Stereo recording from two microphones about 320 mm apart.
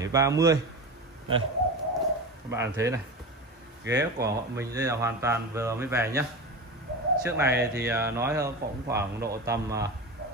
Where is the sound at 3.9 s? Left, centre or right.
Right.